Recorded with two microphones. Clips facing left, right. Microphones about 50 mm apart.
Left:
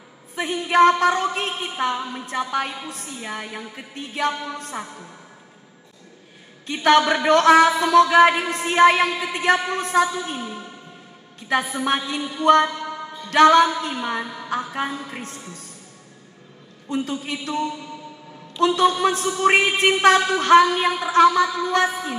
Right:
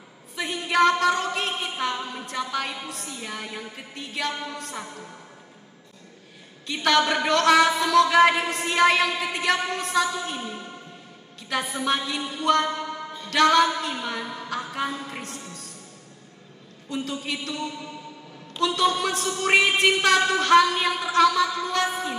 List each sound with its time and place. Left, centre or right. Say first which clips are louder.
0.4 s speech: left 5 dB; left
4.0 s speech: left 5 dB; left
6.7 s speech: left 5 dB; left
12.2 s speech: left 9 dB; centre
14.2 s a woman's voice: left 1 dB; centre
15.1 s speech: left 1 dB; left
16.9 s speech: left 4 dB; left
18.8 s speech: left 3 dB; left